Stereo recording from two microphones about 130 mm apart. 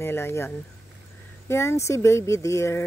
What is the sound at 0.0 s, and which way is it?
Speech, 20° left (ahead or behind).